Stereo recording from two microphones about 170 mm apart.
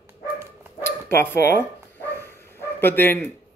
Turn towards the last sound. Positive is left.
turn(degrees=10)  # may be behind; listen again after turning